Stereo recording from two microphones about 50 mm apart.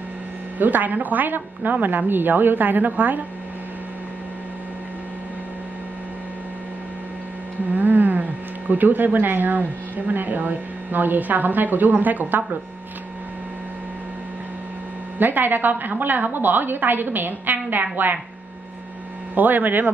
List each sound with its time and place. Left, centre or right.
0.6 s a woman's voice: right
7.7 s speech: right
15.1 s a woman's voice: right
19.3 s a woman's voice: right